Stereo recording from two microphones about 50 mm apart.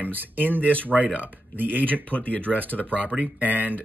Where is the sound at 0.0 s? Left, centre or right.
Right.